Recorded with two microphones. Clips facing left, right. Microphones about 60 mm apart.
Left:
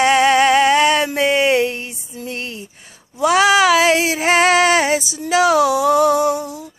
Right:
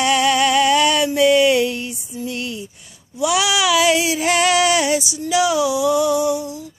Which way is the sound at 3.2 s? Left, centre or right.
Left.